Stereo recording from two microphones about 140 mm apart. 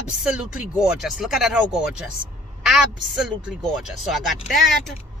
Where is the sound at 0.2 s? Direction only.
5° right (ahead or behind).